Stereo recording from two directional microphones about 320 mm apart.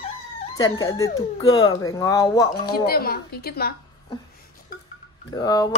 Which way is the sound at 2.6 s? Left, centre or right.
Left.